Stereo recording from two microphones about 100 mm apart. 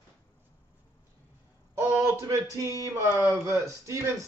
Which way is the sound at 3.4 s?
30° right (ahead or behind).